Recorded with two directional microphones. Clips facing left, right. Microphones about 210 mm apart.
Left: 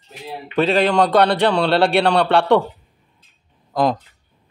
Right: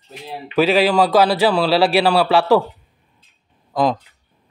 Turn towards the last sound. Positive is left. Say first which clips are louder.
# even
turn(degrees=0)  # may be behind; listen again after turning